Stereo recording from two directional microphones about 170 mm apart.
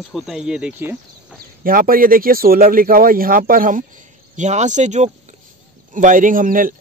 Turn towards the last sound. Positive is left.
turn(degrees=-55)  # may be behind; listen again after turning